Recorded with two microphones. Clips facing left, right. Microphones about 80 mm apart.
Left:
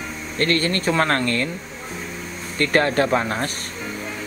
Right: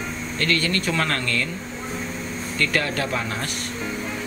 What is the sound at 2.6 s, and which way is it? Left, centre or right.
Speech, left.